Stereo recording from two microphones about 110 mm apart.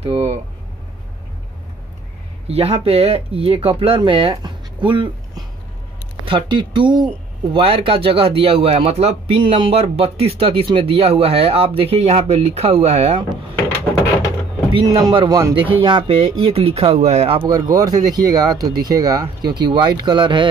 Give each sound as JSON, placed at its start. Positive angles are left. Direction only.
{"t": 0.0, "sound": "vehicle", "side_deg": -70}
{"t": 2.4, "sound": "speech", "side_deg": -70}
{"t": 4.4, "sound": "a sound", "side_deg": -45}
{"t": 6.2, "sound": "speech", "side_deg": -45}
{"t": 7.5, "sound": "speech", "side_deg": -55}
{"t": 9.4, "sound": "speech", "side_deg": -50}
{"t": 14.9, "sound": "speech", "side_deg": -35}
{"t": 15.8, "sound": "speech", "side_deg": -50}
{"t": 17.5, "sound": "speech", "side_deg": -35}